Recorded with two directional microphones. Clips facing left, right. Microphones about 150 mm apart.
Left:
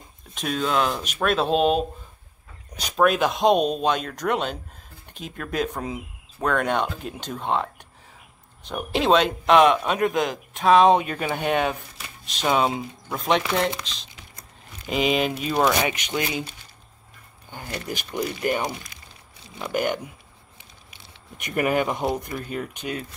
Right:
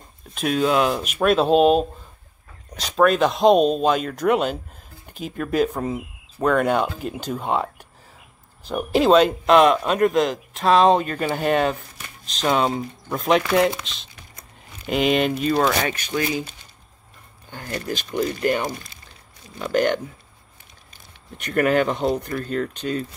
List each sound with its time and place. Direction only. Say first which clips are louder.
0.3 s speech: right 5 dB; 5° right (ahead or behind)
15.5 s speech: right 1 dB; 15° left (ahead or behind)
17.8 s speech: right 4 dB; 10° left (ahead or behind)
21.4 s speech: right 4 dB; 10° left (ahead or behind)